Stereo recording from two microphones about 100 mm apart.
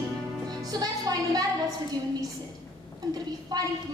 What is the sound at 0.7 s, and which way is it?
Music, 40° right (ahead or behind).